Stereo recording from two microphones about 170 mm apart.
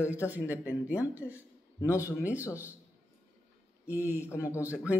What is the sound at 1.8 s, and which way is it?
Speech, 20° left (ahead or behind).